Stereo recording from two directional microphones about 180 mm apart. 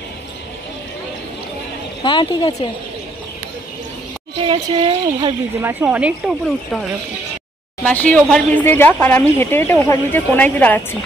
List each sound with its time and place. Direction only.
2.0 s a woman's voice: 25° left (ahead or behind)
4.4 s a woman's voice: 30° right (ahead or behind)
5.6 s speech: 10° right (ahead or behind)
7.8 s speech: 10° left (ahead or behind)